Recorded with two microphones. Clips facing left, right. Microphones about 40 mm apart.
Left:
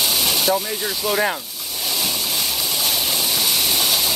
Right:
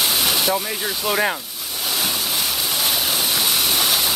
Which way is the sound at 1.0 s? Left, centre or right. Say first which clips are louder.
Even; centre.